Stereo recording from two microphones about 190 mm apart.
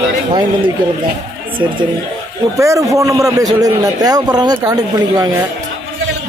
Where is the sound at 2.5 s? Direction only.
15° right (ahead or behind).